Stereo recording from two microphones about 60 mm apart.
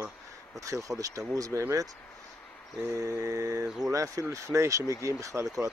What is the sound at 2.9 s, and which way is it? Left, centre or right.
Speech, right.